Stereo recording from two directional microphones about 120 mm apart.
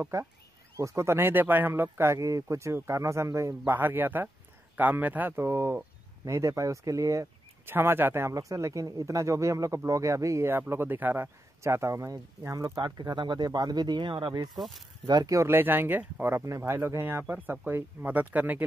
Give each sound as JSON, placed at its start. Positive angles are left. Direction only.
{"t": 0.0, "sound": "speech", "side_deg": -25}
{"t": 14.5, "sound": "speech", "side_deg": 0}
{"t": 15.0, "sound": "speech", "side_deg": -30}